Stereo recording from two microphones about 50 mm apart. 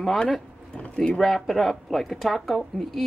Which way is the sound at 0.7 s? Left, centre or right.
Left.